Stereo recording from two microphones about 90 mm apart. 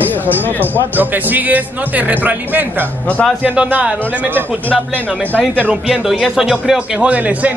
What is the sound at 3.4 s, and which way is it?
Speech, 15° right (ahead or behind).